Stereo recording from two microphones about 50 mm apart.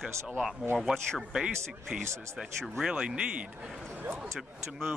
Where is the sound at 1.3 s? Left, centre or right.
Centre.